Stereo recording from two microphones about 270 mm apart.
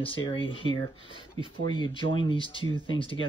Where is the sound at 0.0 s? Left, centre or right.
Centre.